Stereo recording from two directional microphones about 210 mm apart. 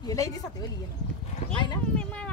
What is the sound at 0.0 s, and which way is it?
Speech, 15° left (ahead or behind).